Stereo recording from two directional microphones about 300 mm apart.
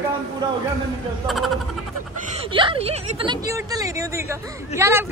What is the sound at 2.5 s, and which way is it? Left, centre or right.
A woman's voice, centre.